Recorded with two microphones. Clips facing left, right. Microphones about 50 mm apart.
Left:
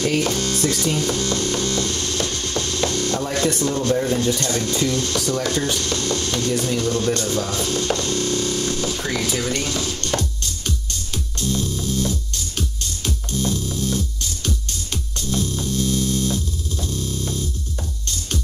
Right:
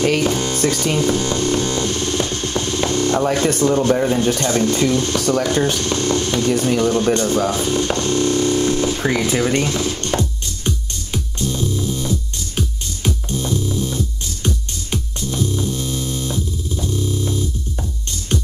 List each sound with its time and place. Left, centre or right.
0.2 s music: centre
0.6 s speech: right
0.9 s hum: centre
3.7 s speech: right
11.3 s music: centre